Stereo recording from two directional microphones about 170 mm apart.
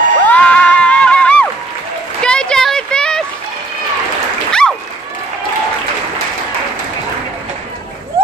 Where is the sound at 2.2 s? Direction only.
5° left (ahead or behind).